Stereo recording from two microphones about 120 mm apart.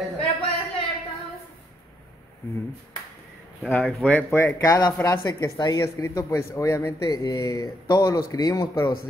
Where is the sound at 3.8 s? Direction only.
10° left (ahead or behind); by 7.0 s 25° left (ahead or behind).